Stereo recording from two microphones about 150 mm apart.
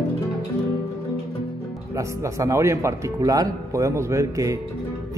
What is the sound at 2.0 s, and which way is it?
Speech, 20° right (ahead or behind).